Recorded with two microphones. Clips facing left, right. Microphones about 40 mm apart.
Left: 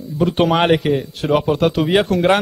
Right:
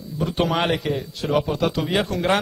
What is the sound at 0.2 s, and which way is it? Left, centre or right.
A man's voice, left.